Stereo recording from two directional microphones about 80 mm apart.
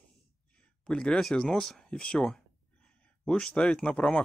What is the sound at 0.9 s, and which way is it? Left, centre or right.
Speech, centre.